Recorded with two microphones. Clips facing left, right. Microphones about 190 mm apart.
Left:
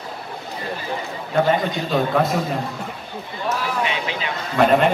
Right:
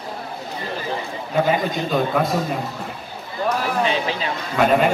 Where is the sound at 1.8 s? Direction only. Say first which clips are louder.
Left 1 dB; centre (ahead or behind).